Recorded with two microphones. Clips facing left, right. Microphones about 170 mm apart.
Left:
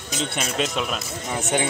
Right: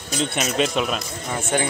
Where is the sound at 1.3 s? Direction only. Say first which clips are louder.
Right 1 dB; 20° left (ahead or behind).